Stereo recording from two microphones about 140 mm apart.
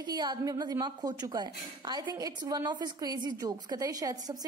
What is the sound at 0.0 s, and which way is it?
A woman's voice, 30° right (ahead or behind).